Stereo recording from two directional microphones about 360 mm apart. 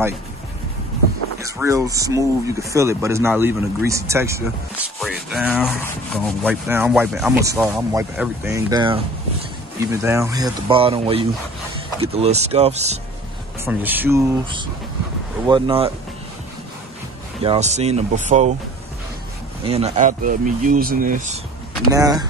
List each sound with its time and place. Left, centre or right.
1.4 s speech: centre
13.7 s speech: centre
17.4 s speech: centre
19.6 s speech: centre
21.9 s speech: centre